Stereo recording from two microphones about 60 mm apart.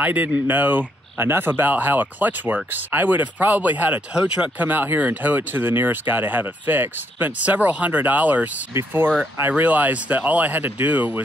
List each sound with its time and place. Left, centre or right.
0.0 s speech: right
4.1 s speech: centre
4.6 s speech: right
8.7 s speech: right